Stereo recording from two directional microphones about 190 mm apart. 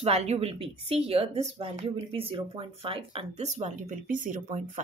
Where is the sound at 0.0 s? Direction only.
35° right (ahead or behind).